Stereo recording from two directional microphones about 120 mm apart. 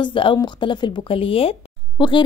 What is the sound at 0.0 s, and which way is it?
Speech, 45° left (ahead or behind).